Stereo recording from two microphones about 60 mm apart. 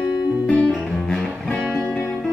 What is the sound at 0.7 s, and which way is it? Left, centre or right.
Music, centre.